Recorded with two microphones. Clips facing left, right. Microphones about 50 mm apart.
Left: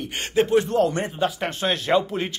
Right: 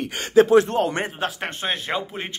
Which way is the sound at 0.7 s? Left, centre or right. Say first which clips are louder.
Left 1 dB; right.